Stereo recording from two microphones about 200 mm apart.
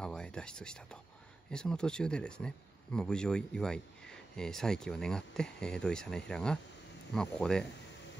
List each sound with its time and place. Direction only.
0.0 s speech: 5° left (ahead or behind)